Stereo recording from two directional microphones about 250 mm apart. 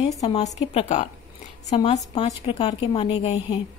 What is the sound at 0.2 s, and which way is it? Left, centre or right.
A woman's voice, centre.